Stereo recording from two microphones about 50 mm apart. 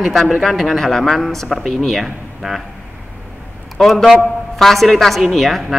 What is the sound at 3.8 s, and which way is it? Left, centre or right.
A man's voice, centre.